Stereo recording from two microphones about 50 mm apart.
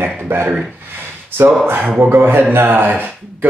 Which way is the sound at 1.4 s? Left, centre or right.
Right.